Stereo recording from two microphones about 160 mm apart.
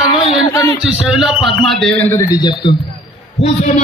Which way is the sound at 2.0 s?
15° left (ahead or behind).